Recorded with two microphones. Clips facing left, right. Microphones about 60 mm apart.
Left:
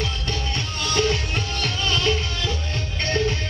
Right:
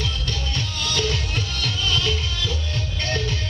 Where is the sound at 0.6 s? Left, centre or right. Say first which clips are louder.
Left 3 dB; left.